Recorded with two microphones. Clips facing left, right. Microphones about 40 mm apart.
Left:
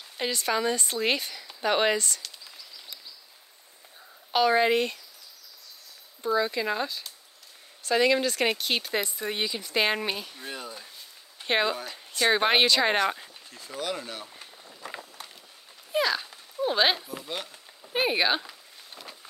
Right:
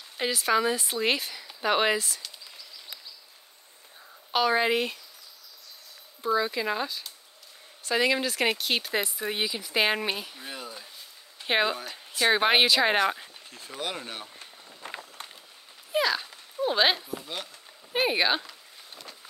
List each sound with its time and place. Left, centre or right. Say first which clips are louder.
0.2 s speech: right 2 dB; centre
4.3 s speech: left 2 dB; centre
6.2 s speech: even; centre
13.7 s speech: left 1 dB; right
14.8 s run: even; right
15.9 s dog: even; centre
17.2 s a sound: left 2 dB; centre